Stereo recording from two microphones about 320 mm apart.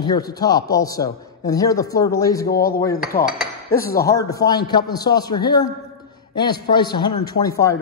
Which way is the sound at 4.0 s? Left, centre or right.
Centre.